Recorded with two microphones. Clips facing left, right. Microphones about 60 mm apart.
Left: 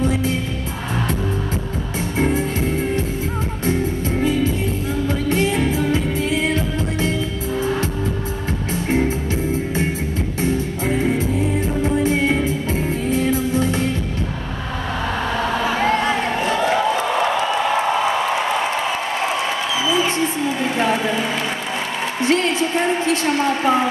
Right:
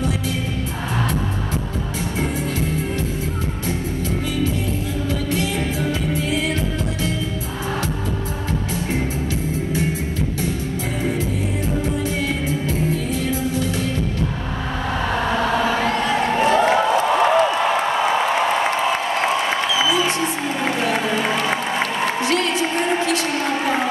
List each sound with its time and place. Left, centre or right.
2.1 s music: left
5.3 s music: left
11.8 s music: left
15.8 s a sound: left
16.3 s crowd: right
22.2 s a sound: left